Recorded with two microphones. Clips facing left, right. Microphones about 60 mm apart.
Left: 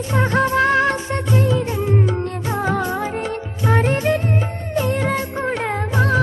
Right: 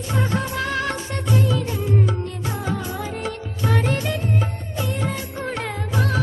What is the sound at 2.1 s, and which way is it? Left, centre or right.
Music, left.